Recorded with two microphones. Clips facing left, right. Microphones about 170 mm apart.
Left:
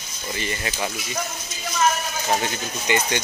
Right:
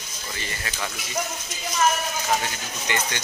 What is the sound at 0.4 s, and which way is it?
Speech, 20° left (ahead or behind).